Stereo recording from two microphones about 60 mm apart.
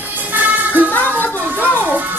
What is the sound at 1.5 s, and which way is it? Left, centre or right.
Music, right.